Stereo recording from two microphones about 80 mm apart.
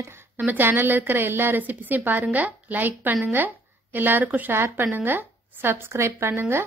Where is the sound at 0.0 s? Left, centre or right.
Right.